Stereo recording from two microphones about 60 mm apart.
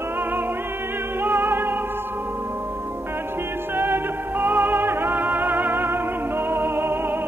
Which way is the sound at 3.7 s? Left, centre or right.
Right.